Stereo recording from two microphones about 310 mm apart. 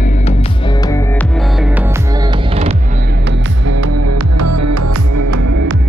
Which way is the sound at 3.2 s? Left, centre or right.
Right.